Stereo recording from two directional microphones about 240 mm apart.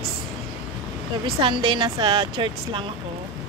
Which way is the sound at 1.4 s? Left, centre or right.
Centre.